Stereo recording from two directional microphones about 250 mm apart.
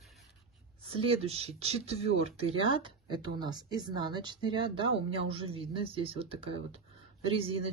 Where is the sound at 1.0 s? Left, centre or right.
Right.